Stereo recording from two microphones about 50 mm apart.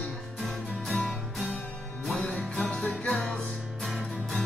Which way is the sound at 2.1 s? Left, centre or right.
Left.